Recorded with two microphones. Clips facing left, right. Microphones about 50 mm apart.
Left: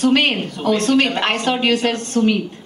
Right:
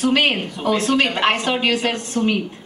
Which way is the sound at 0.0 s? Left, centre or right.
Centre.